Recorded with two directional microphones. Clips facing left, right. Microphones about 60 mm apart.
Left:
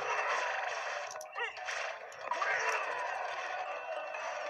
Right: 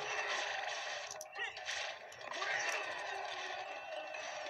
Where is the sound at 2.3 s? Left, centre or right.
Left.